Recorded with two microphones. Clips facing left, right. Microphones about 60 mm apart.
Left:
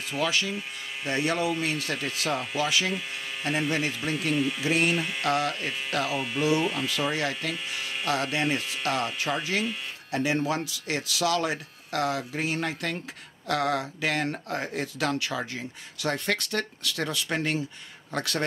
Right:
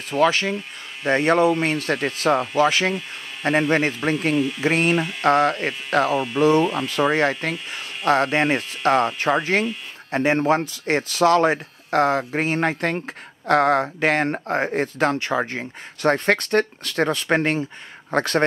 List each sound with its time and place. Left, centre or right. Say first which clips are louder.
0.1 s speech: right 9 dB; right
6.1 s speech: right 7 dB; centre
6.9 s speech: right 8 dB; right